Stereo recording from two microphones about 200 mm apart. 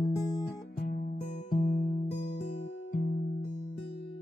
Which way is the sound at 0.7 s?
45° left (ahead or behind).